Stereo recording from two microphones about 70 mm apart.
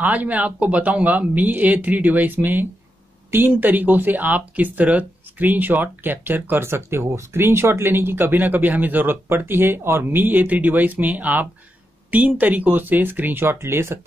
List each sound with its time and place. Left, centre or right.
0.0 s speech: right